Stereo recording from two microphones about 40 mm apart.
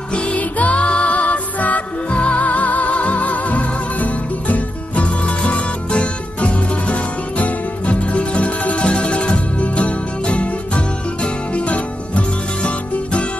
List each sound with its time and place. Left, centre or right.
0.1 s music: left
0.4 s music: left
2.0 s music: left